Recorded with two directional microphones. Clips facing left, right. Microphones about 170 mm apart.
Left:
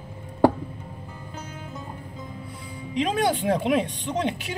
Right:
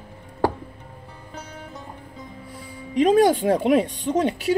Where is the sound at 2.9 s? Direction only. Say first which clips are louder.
Right 7 dB; 40° right (ahead or behind).